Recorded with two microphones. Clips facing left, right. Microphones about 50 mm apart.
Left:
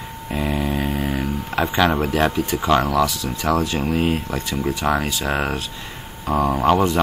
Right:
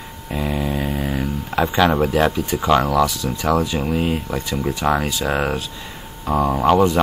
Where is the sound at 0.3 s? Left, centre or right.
Centre.